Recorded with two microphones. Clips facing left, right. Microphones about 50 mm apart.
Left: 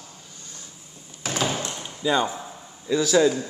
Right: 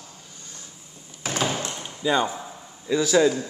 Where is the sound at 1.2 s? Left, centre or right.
Centre.